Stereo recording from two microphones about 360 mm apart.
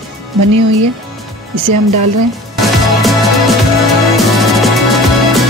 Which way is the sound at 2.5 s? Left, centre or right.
Centre.